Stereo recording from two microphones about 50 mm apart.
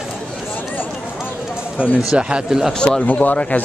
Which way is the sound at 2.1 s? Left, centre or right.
Centre.